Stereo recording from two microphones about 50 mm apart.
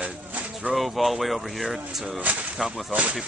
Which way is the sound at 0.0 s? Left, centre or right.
Right.